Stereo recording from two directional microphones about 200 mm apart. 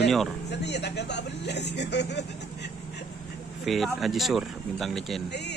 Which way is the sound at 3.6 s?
Centre (ahead or behind).